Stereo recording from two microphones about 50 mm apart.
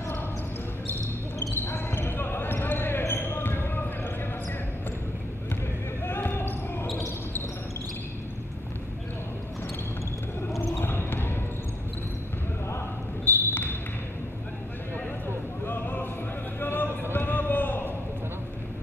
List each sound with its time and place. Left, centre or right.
1.5 s basketball bounce: left
6.0 s basketball bounce: left
10.8 s basketball bounce: left
13.2 s a sound: left
15.6 s music: left
16.5 s a sound: left